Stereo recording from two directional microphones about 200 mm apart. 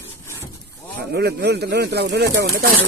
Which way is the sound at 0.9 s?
55° right (ahead or behind).